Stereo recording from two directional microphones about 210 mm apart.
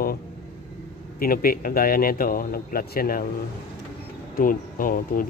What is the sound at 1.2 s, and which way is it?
Speech, 45° left (ahead or behind).